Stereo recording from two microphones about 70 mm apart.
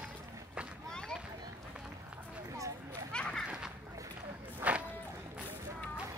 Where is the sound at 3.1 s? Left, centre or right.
Centre.